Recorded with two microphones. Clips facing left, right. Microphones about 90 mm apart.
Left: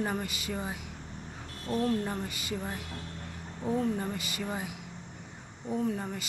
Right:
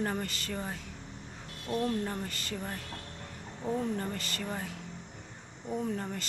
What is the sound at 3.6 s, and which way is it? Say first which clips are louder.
Speech: left 3 dB; 5° left (ahead or behind).